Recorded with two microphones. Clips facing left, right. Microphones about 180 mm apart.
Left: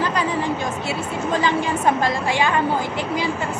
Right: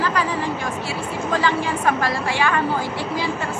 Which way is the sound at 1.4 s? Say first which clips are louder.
Left 2 dB; 20° left (ahead or behind).